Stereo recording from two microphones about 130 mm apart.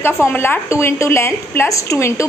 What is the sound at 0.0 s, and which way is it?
A woman's voice, 15° left (ahead or behind).